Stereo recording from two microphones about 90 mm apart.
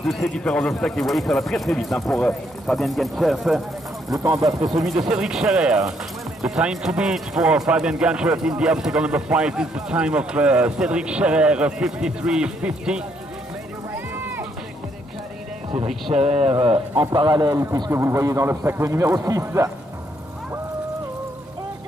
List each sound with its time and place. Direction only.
0.0 s speech: 5° left (ahead or behind)
4.2 s a man's voice: 40° right (ahead or behind)
4.7 s speech: 5° right (ahead or behind)
13.9 s run: 25° right (ahead or behind)
16.1 s speech: 50° right (ahead or behind)
16.5 s speech: 90° right
17.0 s speech: 50° right (ahead or behind)
17.9 s a man's voice: 30° right (ahead or behind)